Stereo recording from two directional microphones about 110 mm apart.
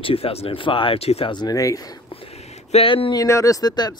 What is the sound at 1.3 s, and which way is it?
Speech, 35° left (ahead or behind).